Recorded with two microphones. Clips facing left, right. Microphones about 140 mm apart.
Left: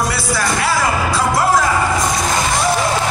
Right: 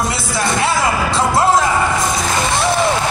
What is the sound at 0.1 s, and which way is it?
Music, 25° right (ahead or behind).